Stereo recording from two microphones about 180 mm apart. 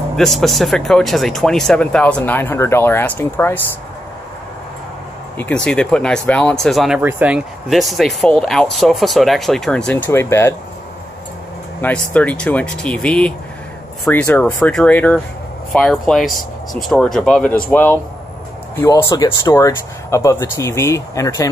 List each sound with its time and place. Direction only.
0.1 s speech: centre (ahead or behind)
5.4 s speech: 5° left (ahead or behind)
11.8 s speech: 10° left (ahead or behind)